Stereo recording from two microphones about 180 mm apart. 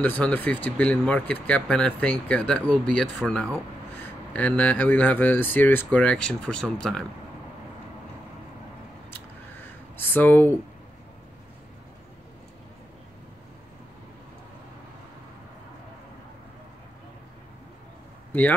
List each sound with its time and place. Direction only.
0.0 s speech: 10° left (ahead or behind)
9.9 s speech: 10° left (ahead or behind)